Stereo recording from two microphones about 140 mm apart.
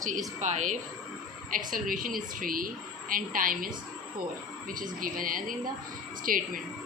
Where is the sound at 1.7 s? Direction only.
80° right.